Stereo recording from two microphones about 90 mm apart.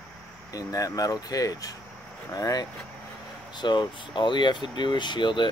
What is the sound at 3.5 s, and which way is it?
Speech, 60° left (ahead or behind).